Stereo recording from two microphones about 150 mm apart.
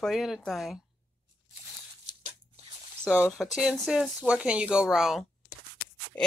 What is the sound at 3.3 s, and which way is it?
Speech, centre (ahead or behind).